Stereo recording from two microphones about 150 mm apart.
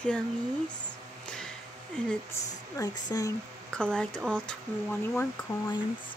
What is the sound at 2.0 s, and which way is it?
Speech, 10° left (ahead or behind).